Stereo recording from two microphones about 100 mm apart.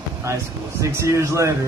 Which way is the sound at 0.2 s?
30° right (ahead or behind).